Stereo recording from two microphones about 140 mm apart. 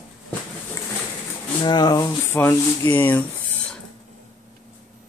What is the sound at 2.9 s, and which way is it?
Speech, 15° left (ahead or behind).